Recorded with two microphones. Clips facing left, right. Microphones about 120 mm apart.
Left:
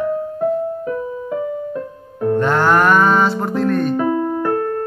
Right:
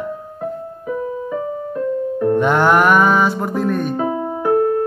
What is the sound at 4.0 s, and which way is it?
Piano, 20° right (ahead or behind).